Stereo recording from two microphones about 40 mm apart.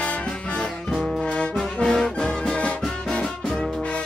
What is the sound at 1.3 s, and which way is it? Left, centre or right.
Brass instrument, left.